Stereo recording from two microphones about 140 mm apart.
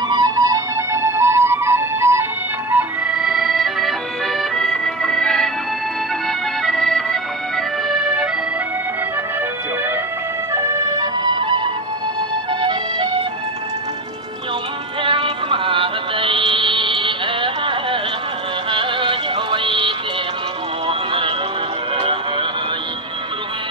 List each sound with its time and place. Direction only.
0.1 s music: 25° right (ahead or behind); by 5.5 s 5° left (ahead or behind)
6.6 s accordion: 5° left (ahead or behind)
10.5 s music: 25° right (ahead or behind)
15.0 s synthetic singing: 40° right (ahead or behind)
18.7 s music: 35° right (ahead or behind)
21.9 s a sound: 40° right (ahead or behind)